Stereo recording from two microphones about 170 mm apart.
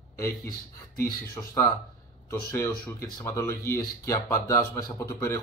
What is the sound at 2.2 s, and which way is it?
Speech, 15° left (ahead or behind).